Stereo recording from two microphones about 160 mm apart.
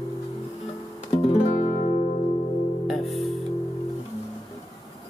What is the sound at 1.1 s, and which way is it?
Music, 35° left (ahead or behind).